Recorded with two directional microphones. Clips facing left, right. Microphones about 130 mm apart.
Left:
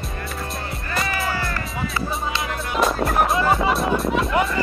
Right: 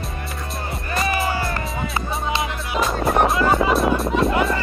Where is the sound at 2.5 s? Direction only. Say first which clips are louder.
Left 1 dB; centre (ahead or behind).